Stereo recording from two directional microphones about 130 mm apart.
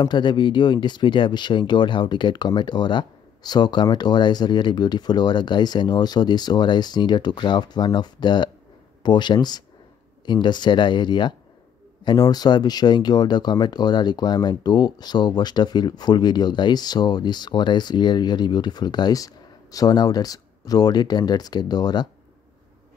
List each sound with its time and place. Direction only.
0.0 s speech: 35° left (ahead or behind)